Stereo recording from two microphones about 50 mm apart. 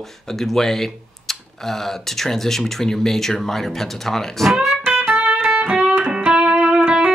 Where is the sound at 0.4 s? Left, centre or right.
Centre.